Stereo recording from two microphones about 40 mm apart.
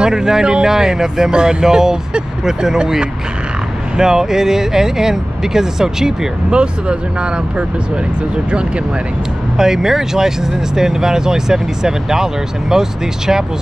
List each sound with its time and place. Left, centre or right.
0.0 s speech: centre
6.5 s speech: right
9.6 s speech: centre